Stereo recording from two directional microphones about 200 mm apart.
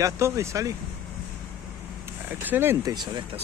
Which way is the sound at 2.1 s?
10° right (ahead or behind).